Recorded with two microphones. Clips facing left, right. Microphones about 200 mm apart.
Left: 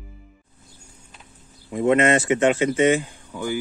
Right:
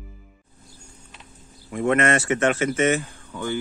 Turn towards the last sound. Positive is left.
turn(degrees=10)  # may be behind; listen again after turning